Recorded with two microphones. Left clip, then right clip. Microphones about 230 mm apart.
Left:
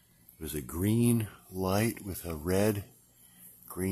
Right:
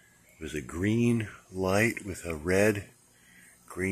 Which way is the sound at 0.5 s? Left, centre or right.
Centre.